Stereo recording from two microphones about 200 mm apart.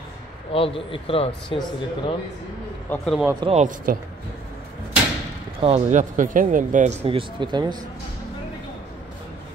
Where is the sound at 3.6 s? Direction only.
40° right (ahead or behind).